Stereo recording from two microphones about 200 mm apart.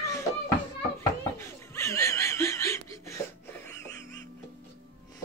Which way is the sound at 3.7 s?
15° left (ahead or behind).